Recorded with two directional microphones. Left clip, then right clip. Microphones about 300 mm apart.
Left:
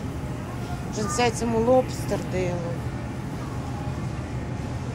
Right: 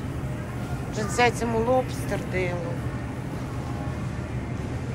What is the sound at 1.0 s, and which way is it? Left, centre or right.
Speech, centre.